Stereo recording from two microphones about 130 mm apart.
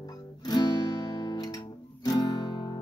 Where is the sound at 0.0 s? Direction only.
30° left (ahead or behind).